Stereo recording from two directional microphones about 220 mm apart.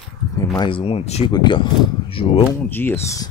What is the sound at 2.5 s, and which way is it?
Speech, 10° left (ahead or behind).